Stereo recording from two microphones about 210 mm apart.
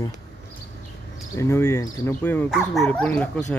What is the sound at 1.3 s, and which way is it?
Speech, 10° left (ahead or behind).